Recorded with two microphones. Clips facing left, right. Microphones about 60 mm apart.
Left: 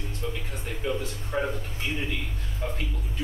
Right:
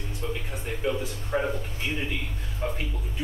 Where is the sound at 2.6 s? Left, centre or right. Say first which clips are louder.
Right 2 dB; centre.